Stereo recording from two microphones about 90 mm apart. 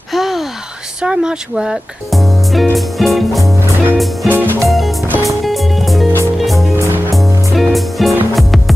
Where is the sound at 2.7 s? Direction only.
Centre (ahead or behind).